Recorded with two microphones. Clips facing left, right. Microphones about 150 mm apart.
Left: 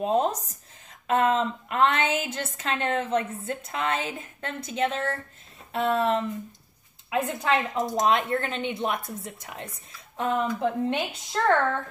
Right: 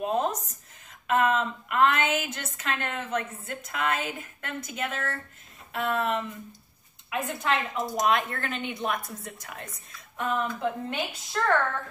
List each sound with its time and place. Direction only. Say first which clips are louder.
0.0 s a woman's voice: left 3 dB; 30° left (ahead or behind)